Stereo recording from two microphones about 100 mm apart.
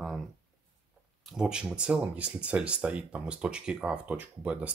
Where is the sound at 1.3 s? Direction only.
10° right (ahead or behind).